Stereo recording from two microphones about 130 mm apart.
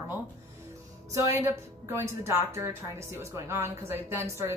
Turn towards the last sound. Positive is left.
turn(degrees=-20)  # may be behind; listen again after turning